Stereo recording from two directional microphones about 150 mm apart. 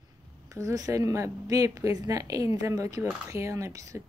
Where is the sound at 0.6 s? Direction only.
20° right (ahead or behind).